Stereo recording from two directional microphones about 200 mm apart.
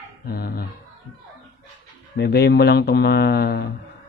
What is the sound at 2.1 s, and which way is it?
Speech, 55° left (ahead or behind).